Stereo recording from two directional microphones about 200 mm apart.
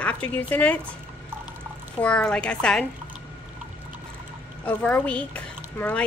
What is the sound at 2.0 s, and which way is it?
Speech, 5° left (ahead or behind).